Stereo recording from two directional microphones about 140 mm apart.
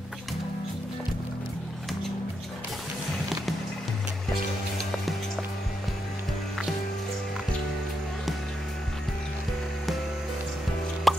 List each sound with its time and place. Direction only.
4.7 s music: centre (ahead or behind)
11.1 s plop: centre (ahead or behind)